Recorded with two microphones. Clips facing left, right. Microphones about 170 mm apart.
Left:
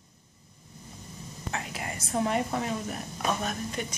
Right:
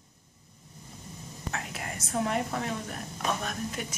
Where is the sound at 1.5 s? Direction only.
Centre (ahead or behind).